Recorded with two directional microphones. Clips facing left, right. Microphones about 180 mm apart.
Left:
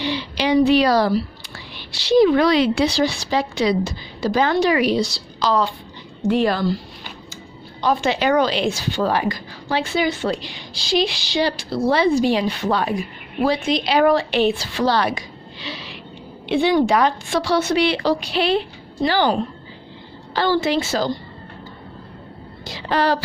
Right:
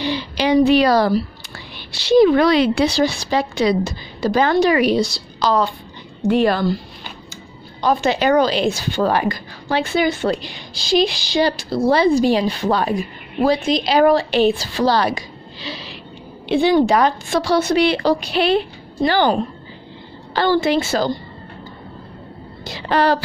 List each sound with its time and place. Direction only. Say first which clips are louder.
0.0 s a sound: right 2 dB; 45° right (ahead or behind)
1.8 s a woman's voice: right 2 dB; 50° right (ahead or behind)
6.2 s a woman's voice: right 2 dB; 60° right (ahead or behind)
7.8 s a woman's voice: right 2 dB; 45° right (ahead or behind)
20.3 s a woman's voice: right 2 dB; 55° right (ahead or behind)
22.7 s speech: right 3 dB; 55° right (ahead or behind)